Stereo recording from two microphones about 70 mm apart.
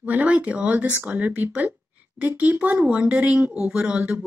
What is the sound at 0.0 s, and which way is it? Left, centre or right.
Speech, right.